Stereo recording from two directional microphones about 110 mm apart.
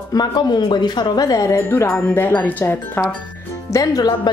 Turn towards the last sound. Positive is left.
turn(degrees=35)  # may be behind; listen again after turning